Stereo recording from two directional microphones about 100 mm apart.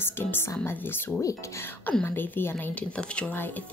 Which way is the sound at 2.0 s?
20° left (ahead or behind).